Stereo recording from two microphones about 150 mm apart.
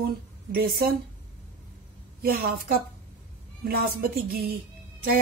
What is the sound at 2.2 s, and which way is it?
A woman's voice, 80° right.